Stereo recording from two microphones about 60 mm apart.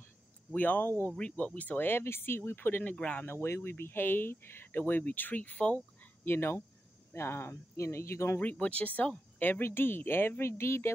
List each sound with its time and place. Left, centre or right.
0.5 s speech: left
3.3 s speech: left
6.2 s speech: left
8.4 s speech: left
9.4 s speech: left